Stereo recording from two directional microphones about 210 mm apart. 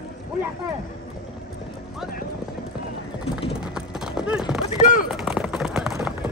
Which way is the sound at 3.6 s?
5° right (ahead or behind).